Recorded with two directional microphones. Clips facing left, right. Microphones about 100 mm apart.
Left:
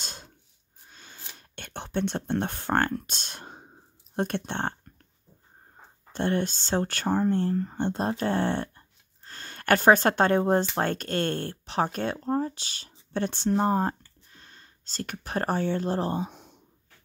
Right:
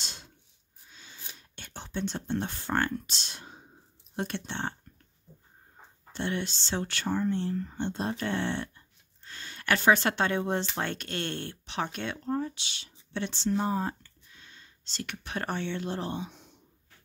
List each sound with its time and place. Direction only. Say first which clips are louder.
0.0 s a sound: left 3 dB; 45° left (ahead or behind)
4.1 s speech: left 5 dB; 50° left (ahead or behind)
6.1 s speech: left 6 dB; 45° left (ahead or behind)